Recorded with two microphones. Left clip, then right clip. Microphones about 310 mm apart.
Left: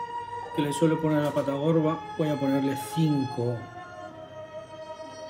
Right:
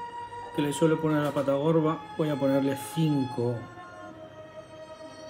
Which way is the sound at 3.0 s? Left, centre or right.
Right.